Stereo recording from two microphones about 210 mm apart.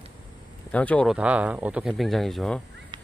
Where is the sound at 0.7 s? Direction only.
5° left (ahead or behind).